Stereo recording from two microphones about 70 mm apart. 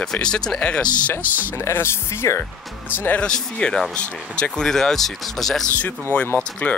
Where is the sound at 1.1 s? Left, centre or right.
Left.